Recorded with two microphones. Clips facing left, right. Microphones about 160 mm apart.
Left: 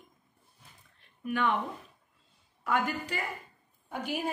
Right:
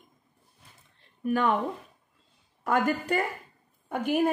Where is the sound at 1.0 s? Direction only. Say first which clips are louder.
Right 5 dB; 40° right (ahead or behind).